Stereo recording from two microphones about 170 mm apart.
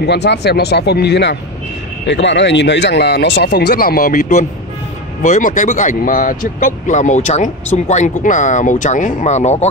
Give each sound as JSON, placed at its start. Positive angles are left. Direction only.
{"t": 0.0, "sound": "speech", "side_deg": 85}
{"t": 2.0, "sound": "a man's voice", "side_deg": 90}